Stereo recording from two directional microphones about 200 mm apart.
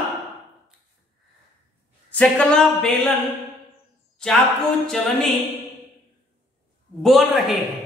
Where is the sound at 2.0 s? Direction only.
5° left (ahead or behind).